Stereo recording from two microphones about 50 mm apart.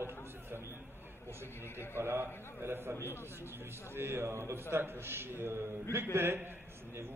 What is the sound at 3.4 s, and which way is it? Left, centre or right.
A man's voice, right.